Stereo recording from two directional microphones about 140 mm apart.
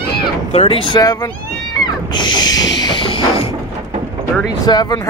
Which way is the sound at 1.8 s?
30° left (ahead or behind).